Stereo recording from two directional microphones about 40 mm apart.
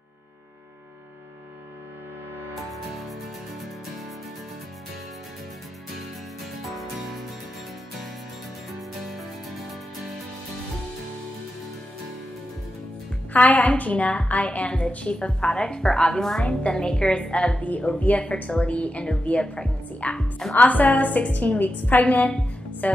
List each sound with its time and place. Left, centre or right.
2.7 s music: centre
6.4 s music: centre
9.0 s music: centre
13.3 s a woman's voice: left
15.1 s a woman's voice: left
17.6 s a woman's voice: left
22.0 s a woman's voice: left